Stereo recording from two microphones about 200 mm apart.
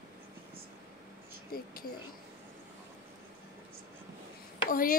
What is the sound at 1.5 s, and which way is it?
Speech, 50° left (ahead or behind).